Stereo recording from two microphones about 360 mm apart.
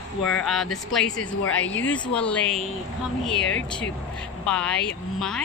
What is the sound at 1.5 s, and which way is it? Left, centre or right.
Speech, left.